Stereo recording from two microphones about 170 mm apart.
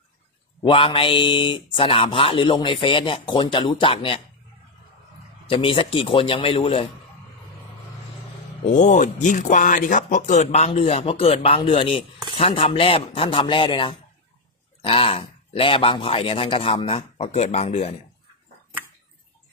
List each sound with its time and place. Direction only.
0.6 s speech: 30° left (ahead or behind)
5.5 s speech: 30° left (ahead or behind)
8.6 s speech: 45° left (ahead or behind)